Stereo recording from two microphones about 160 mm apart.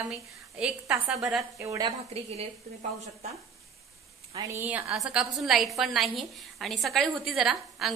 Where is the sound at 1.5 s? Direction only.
20° right (ahead or behind).